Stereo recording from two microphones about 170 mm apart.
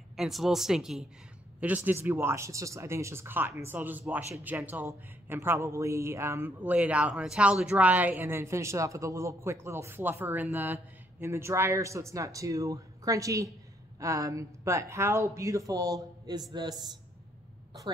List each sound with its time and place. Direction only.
0.1 s a man's voice: centre (ahead or behind); by 16.4 s 20° right (ahead or behind)